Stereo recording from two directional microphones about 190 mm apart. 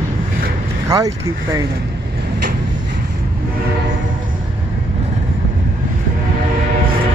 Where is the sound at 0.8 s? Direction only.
20° right (ahead or behind).